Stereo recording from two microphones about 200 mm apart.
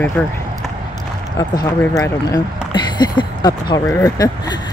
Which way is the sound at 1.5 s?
20° left (ahead or behind).